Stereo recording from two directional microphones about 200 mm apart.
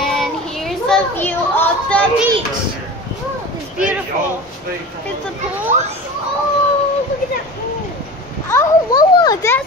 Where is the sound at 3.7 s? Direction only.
5° right (ahead or behind).